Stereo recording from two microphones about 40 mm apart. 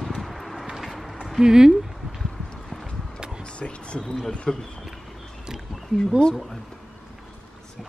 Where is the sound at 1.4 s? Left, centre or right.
Centre.